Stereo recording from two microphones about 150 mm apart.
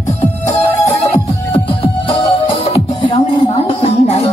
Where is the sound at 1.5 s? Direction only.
35° left (ahead or behind).